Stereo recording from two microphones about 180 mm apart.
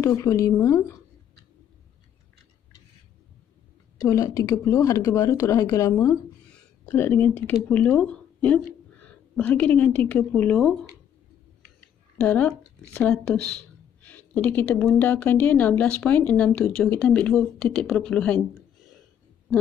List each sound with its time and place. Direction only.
0.0 s speech: 15° left (ahead or behind)
4.0 s a woman's voice: 20° left (ahead or behind); by 10.8 s centre (ahead or behind)
12.2 s speech: 5° left (ahead or behind)